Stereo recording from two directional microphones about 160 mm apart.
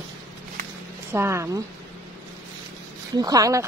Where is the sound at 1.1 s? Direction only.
15° right (ahead or behind).